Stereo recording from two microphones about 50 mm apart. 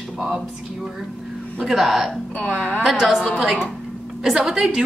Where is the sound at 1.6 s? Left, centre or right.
Centre.